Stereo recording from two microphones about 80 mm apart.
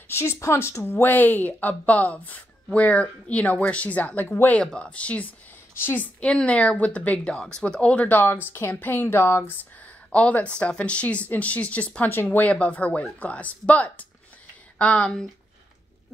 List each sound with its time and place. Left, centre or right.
0.1 s a woman's voice: left; by 5.3 s centre
5.8 s a woman's voice: left
6.2 s speech: centre; by 9.4 s left
10.1 s speech: centre